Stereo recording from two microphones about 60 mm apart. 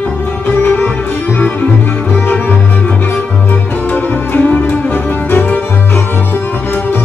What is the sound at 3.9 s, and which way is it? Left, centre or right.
Music, left.